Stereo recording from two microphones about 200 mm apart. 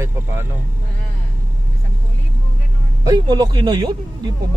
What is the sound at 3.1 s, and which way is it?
Speech, 20° right (ahead or behind).